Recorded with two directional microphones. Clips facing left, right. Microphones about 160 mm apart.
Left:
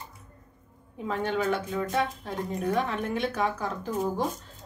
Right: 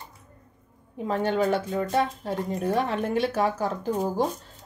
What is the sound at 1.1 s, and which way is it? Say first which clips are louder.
Speech: right 4 dB; 35° right (ahead or behind).